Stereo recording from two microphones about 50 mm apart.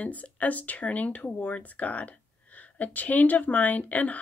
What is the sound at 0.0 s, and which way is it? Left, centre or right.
A woman's voice, left.